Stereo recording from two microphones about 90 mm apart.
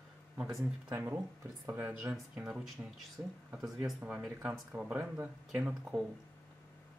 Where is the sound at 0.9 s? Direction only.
25° right (ahead or behind).